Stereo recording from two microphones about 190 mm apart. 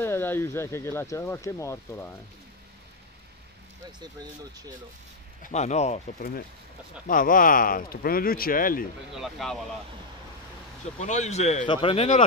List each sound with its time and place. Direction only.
0.0 s speech: 10° left (ahead or behind)
5.4 s speech: 35° left (ahead or behind)
7.1 s speech: 45° left (ahead or behind)
9.1 s speech: centre (ahead or behind)
11.0 s speech: 40° left (ahead or behind)